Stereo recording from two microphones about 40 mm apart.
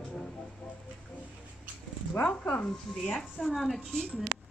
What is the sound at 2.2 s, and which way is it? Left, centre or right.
Speech, left.